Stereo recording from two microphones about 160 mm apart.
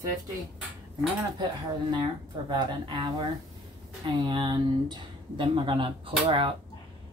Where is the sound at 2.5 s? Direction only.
30° right (ahead or behind).